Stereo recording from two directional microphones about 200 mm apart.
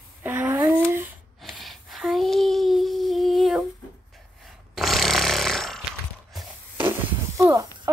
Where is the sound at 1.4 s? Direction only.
Centre (ahead or behind).